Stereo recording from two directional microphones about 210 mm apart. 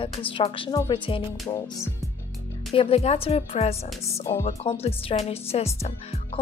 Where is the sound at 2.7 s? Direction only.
30° left (ahead or behind).